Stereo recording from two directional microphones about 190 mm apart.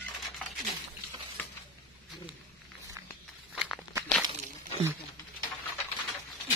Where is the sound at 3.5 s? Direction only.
5° right (ahead or behind).